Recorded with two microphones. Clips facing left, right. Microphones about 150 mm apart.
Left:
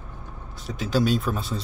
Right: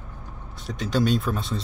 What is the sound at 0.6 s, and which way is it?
Speech, centre (ahead or behind).